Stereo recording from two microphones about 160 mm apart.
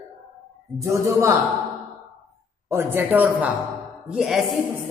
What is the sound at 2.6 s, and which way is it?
A woman's voice, 15° right (ahead or behind).